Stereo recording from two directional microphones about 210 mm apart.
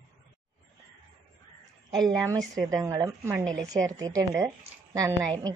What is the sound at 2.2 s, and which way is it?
A woman's voice, 15° right (ahead or behind).